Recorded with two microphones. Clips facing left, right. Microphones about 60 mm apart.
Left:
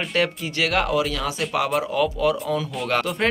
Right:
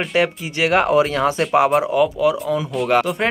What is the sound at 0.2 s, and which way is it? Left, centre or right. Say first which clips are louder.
Speech: right 3 dB; right.